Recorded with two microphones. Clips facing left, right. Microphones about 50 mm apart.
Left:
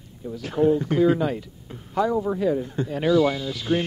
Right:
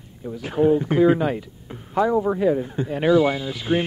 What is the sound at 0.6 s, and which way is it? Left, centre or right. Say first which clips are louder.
Speech: right 2 dB; centre.